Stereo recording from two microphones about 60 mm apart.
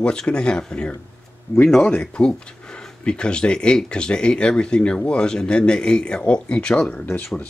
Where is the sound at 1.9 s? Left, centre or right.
Centre.